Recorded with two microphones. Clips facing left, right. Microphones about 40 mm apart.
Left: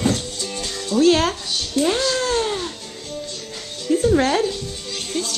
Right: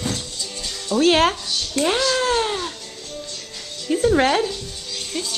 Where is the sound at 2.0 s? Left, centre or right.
Centre.